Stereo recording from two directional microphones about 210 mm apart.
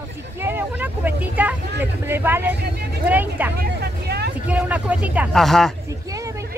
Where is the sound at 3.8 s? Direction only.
50° right (ahead or behind).